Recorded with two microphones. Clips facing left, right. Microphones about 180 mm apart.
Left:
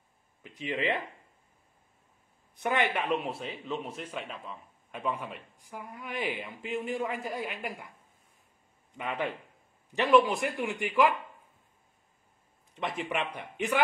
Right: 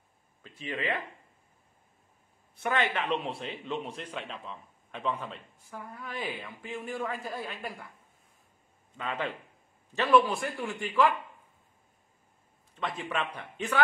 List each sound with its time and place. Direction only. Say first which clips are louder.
0.4 s speech: left 3 dB; 20° left (ahead or behind)
2.5 s a man's voice: left 1 dB; 15° left (ahead or behind)
8.9 s a man's voice: left 1 dB; 15° left (ahead or behind)
12.7 s a man's voice: left 1 dB; 20° left (ahead or behind)